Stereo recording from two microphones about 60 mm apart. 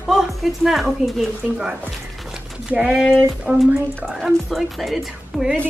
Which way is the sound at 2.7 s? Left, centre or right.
Right.